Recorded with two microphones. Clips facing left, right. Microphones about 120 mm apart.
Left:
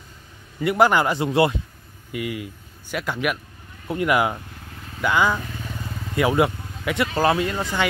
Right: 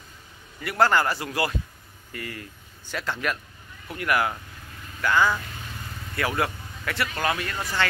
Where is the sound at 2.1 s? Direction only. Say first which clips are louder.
Left 8 dB; 10° left (ahead or behind).